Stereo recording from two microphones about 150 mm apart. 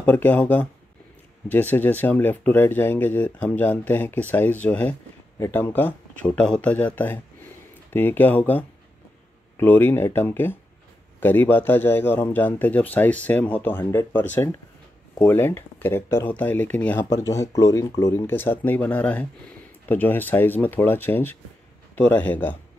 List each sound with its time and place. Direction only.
0.0 s speech: 10° left (ahead or behind)
7.9 s speech: 15° left (ahead or behind)
17.0 s speech: 20° left (ahead or behind)